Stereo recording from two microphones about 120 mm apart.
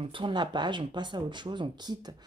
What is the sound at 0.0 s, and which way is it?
Speech, 45° right (ahead or behind).